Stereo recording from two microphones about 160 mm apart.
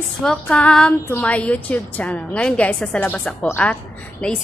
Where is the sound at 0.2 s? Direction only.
5° left (ahead or behind).